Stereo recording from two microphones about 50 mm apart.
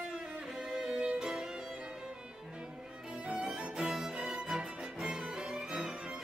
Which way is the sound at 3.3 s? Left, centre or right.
Centre.